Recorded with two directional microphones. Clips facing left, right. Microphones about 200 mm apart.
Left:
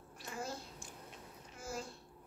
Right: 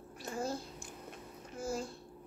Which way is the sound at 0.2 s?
40° right (ahead or behind).